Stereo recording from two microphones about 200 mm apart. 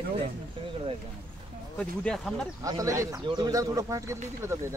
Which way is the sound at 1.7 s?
5° left (ahead or behind).